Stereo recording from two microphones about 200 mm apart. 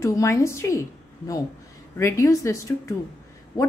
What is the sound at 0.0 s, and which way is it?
A woman's voice, 15° left (ahead or behind).